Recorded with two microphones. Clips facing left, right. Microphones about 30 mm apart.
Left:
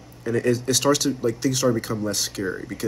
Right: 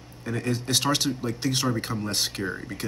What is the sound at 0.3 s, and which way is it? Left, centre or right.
Speech, right.